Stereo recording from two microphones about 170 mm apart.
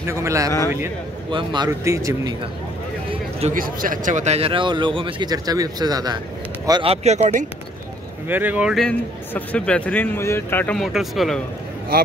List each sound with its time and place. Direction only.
0.0 s a man's voice: 15° right (ahead or behind)
3.1 s a sound: 35° right (ahead or behind)
3.5 s a man's voice: 55° right (ahead or behind)
8.3 s speech: 10° right (ahead or behind)
8.8 s speech: 10° left (ahead or behind)
11.9 s a man's voice: 60° right (ahead or behind)